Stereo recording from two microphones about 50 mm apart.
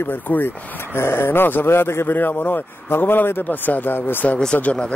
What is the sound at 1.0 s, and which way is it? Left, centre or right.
A man's voice, left.